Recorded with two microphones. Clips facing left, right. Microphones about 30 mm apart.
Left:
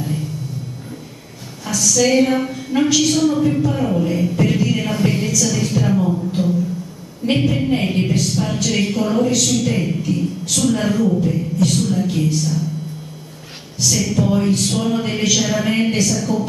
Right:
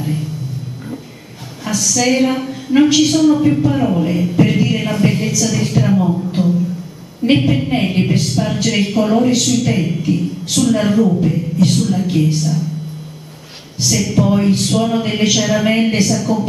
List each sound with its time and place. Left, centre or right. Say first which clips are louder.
2.0 s a woman's voice: even; centre
5.6 s a sound: right 3 dB; right
7.2 s a woman's voice: right 3 dB; centre
10.1 s a woman's voice: right 5 dB; right
10.5 s a woman's voice: right 4 dB; centre
13.8 s a woman's voice: right 3 dB; right